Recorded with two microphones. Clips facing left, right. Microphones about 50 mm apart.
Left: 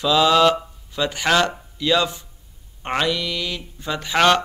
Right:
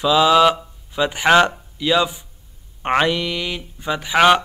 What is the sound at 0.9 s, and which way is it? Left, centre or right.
Speech, centre.